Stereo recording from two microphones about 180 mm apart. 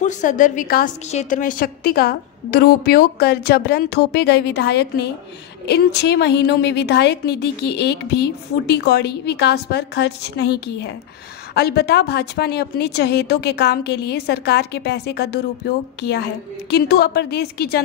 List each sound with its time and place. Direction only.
0.0 s a woman's voice: 45° left (ahead or behind); by 17.8 s 60° left (ahead or behind)